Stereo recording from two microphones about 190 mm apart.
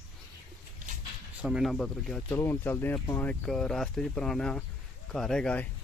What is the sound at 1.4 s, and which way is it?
Speech, 5° right (ahead or behind).